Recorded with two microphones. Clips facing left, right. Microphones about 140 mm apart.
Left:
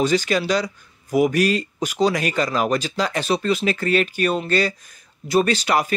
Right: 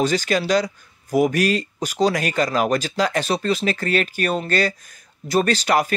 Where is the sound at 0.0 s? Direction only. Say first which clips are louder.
Left 1 dB; 45° right (ahead or behind).